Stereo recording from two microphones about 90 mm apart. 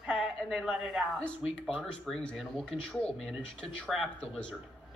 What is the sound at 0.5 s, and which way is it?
Speech, 10° right (ahead or behind).